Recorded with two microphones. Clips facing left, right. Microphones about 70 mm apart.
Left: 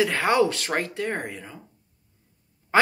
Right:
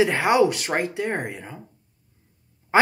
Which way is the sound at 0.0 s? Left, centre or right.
Centre.